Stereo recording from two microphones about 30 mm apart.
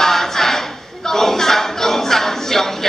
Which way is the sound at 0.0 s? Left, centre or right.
Centre.